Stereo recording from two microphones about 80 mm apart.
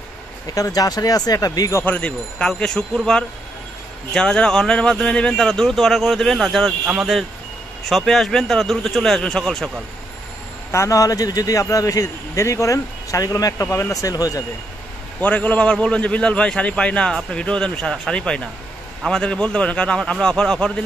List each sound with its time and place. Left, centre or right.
0.6 s speech: left
1.9 s a man's voice: centre
10.7 s speech: left
15.1 s a man's voice: centre